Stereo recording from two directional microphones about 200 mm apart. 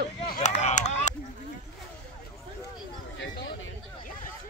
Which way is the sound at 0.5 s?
35° left (ahead or behind).